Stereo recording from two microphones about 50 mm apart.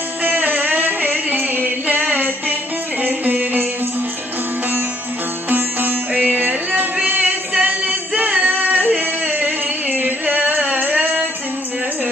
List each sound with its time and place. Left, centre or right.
0.2 s music: right
5.5 s music: right
7.5 s a sound: right
8.2 s music: right
10.8 s singing: right